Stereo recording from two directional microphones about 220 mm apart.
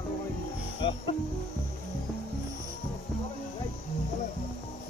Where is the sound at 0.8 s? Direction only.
20° left (ahead or behind).